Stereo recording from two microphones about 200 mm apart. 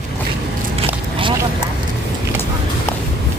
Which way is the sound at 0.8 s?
25° right (ahead or behind).